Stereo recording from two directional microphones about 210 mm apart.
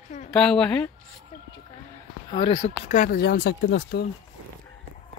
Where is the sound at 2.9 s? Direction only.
40° left (ahead or behind).